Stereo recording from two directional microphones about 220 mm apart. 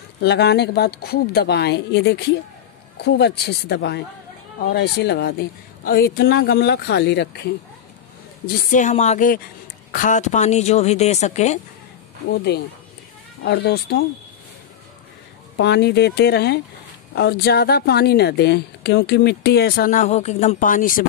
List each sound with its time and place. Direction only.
0.2 s a woman's voice: 50° left (ahead or behind)
8.5 s speech: 35° left (ahead or behind)
12.3 s a woman's voice: 50° left (ahead or behind)
15.5 s a woman's voice: 50° left (ahead or behind)